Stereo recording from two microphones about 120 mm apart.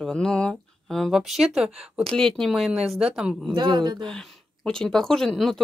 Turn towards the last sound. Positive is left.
turn(degrees=5)  # may be behind; listen again after turning